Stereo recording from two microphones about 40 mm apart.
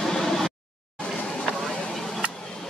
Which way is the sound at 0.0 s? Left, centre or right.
Centre.